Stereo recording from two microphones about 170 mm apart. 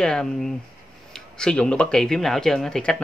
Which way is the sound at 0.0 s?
5° left (ahead or behind).